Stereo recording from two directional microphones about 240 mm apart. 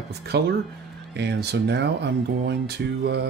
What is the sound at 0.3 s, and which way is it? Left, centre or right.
Speech, right.